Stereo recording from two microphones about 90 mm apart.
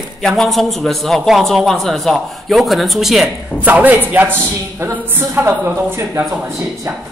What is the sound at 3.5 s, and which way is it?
A woman's voice, 15° right (ahead or behind).